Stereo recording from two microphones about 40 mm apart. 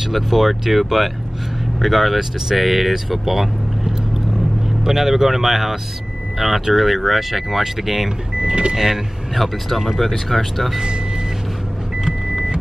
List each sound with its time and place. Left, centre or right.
0.0 s speech: centre
8.4 s speech: right
8.7 s speech: centre